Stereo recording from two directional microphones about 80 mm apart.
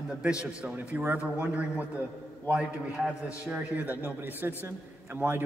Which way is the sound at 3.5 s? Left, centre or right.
Centre.